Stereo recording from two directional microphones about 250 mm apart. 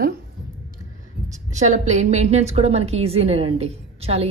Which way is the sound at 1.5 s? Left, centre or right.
Right.